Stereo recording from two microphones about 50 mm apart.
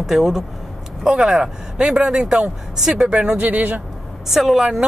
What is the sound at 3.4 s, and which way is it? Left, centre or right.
Speech, right.